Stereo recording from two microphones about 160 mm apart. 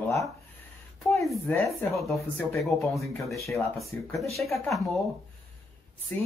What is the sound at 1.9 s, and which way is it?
Speech, centre (ahead or behind).